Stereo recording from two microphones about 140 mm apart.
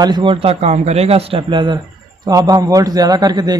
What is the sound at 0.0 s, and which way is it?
A man's voice, 35° right (ahead or behind).